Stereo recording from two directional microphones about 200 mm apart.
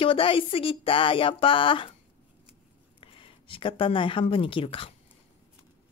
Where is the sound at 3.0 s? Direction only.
25° left (ahead or behind).